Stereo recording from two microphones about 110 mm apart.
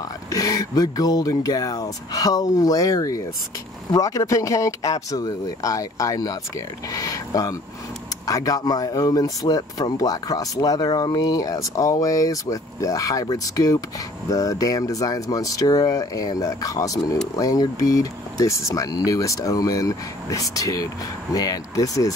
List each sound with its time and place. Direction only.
0.3 s speech: 35° left (ahead or behind)
6.9 s a sound: 30° left (ahead or behind)
8.3 s speech: 35° left (ahead or behind)